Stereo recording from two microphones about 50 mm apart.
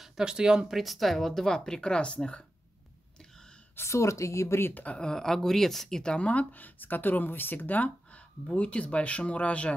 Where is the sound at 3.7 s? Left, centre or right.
Left.